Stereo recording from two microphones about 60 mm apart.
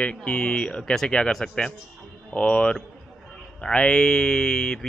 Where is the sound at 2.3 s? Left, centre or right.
Centre.